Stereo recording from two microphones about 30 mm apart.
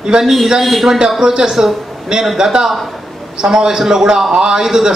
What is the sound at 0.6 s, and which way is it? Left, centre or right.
Speech, centre.